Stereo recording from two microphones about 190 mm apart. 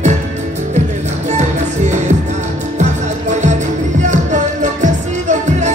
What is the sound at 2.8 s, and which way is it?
Music, 40° right (ahead or behind).